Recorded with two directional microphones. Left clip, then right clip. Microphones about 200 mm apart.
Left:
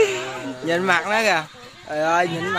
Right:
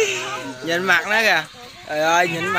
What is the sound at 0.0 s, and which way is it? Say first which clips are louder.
Speech: left 1 dB; 25° left (ahead or behind).